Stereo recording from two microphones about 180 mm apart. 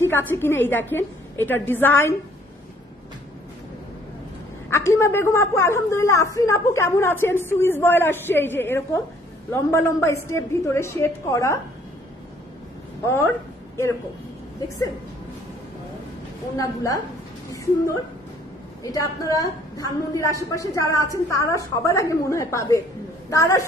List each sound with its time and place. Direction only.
0.0 s a woman's voice: 10° left (ahead or behind)
4.6 s a woman's voice: 15° left (ahead or behind)
16.5 s a woman's voice: 20° left (ahead or behind)
18.8 s a woman's voice: 20° left (ahead or behind)